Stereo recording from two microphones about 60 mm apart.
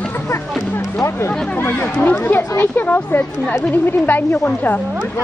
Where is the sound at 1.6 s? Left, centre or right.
Left.